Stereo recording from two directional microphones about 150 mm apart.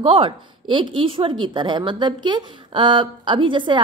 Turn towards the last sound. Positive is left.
turn(degrees=-30)  # may be behind; listen again after turning